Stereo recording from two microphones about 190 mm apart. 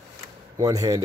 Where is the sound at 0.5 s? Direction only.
20° right (ahead or behind).